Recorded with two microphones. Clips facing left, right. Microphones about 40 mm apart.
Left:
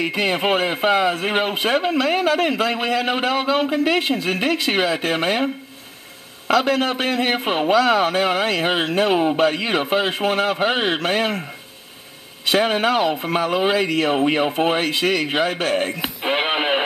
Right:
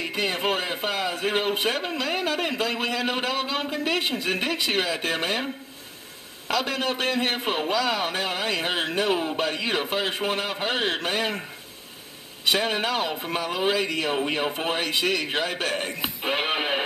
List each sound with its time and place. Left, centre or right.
0.0 s a man's voice: left
6.4 s a man's voice: left
6.8 s a man's voice: centre
12.5 s a man's voice: left